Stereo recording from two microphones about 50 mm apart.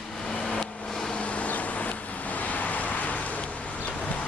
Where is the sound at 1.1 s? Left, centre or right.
Left.